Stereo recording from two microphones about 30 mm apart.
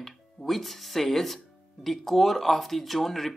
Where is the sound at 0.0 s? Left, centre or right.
Centre.